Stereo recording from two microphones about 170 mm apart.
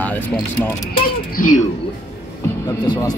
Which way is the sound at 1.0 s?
55° left (ahead or behind).